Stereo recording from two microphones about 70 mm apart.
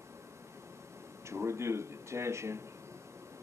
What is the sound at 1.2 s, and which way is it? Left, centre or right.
A man's voice, right.